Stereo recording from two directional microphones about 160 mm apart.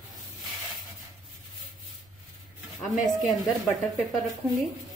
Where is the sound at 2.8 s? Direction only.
Centre (ahead or behind).